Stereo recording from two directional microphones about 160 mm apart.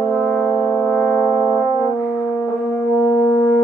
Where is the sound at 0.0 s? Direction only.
15° left (ahead or behind).